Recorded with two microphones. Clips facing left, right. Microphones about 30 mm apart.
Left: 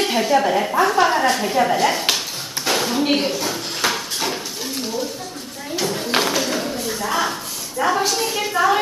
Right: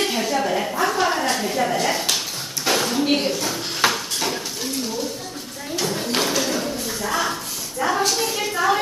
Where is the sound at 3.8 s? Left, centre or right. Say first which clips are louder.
Left 1 dB; centre.